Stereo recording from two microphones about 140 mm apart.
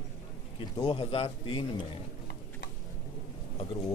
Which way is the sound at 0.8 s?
40° left (ahead or behind).